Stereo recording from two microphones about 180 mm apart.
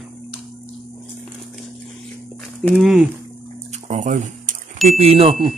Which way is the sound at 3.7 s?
40° right (ahead or behind).